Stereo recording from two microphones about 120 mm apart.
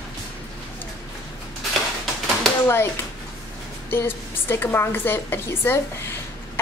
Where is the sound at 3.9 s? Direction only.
20° left (ahead or behind).